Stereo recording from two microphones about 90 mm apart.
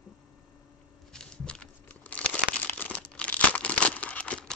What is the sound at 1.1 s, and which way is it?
Crumpling, 10° left (ahead or behind).